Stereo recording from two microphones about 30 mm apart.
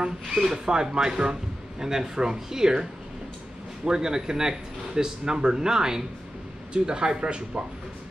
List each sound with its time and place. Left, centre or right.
0.0 s speech: right